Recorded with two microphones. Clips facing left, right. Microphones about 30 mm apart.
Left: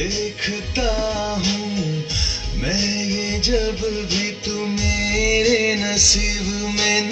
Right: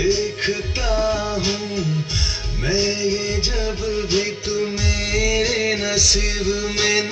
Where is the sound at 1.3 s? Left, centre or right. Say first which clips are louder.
Even; centre.